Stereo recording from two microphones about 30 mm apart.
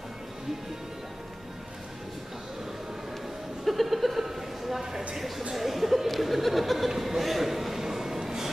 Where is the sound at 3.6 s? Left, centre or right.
Centre.